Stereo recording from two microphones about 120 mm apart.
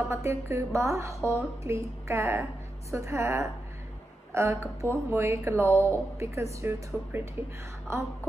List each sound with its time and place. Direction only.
0.1 s a woman's voice: 25° right (ahead or behind)